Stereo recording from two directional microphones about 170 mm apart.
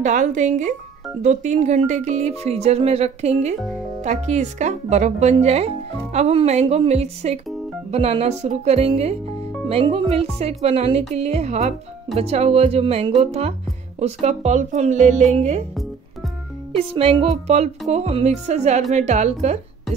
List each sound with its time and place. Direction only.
0.0 s speech: 45° right (ahead or behind)
16.7 s speech: 35° right (ahead or behind)